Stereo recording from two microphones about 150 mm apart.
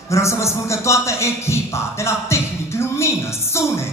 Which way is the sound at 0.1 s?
20° left (ahead or behind).